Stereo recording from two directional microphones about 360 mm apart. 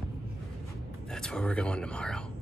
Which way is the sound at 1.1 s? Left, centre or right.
Centre.